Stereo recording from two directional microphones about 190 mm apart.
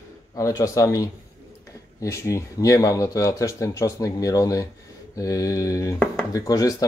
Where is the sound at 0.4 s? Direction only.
15° left (ahead or behind).